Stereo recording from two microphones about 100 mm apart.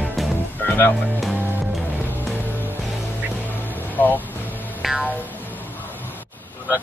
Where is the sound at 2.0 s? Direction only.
20° left (ahead or behind).